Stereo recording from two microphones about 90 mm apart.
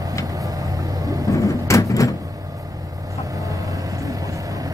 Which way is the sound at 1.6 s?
35° left (ahead or behind).